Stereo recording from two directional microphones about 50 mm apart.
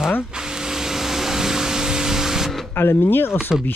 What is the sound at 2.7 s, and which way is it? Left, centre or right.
Speech, left.